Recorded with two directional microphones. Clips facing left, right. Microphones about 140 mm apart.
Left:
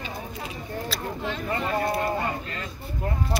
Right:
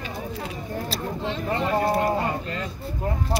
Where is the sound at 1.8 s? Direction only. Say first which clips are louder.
Right 4 dB; 30° right (ahead or behind).